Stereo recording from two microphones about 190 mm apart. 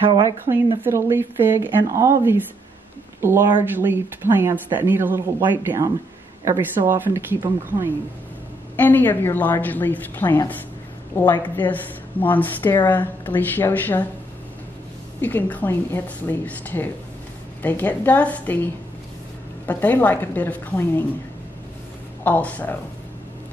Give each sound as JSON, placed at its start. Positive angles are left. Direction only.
{"t": 0.1, "sound": "speech", "side_deg": -25}
{"t": 0.8, "sound": "speech", "side_deg": -15}
{"t": 8.7, "sound": "a woman's voice", "side_deg": 10}
{"t": 15.1, "sound": "a woman's voice", "side_deg": 10}
{"t": 22.2, "sound": "a woman's voice", "side_deg": 10}